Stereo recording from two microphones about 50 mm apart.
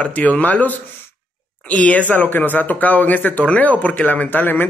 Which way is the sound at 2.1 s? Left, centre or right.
Left.